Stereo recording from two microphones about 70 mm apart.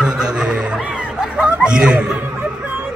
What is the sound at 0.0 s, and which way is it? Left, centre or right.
Chuckle, centre.